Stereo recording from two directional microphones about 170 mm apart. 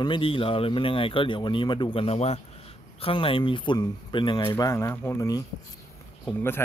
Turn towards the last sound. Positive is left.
turn(degrees=15)  # may be behind; listen again after turning